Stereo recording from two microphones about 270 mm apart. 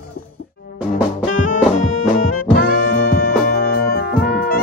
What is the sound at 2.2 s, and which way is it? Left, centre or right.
Music, left.